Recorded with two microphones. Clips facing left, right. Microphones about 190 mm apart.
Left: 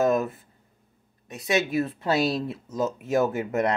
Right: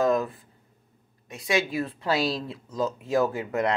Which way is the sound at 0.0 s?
25° left (ahead or behind).